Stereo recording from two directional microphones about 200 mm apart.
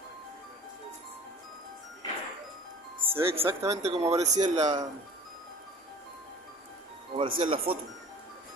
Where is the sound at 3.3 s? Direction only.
30° right (ahead or behind).